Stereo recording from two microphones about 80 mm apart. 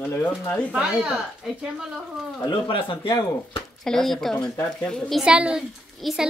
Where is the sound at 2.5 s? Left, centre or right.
Left.